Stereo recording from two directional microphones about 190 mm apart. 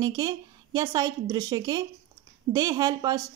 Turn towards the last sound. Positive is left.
turn(degrees=-20)  # may be behind; listen again after turning